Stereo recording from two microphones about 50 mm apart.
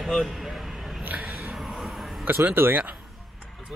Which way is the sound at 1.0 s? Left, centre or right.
Right.